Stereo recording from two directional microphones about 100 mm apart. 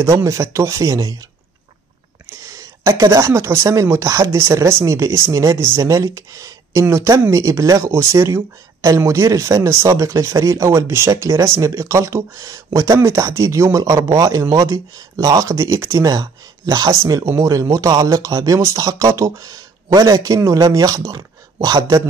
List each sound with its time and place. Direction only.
0.0 s speech: 30° right (ahead or behind)
2.2 s speech: 30° right (ahead or behind)
16.9 s speech: 30° right (ahead or behind)